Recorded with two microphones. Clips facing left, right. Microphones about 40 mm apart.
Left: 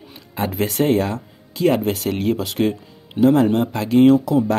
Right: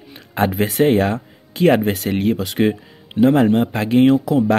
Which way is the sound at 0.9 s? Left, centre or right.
Right.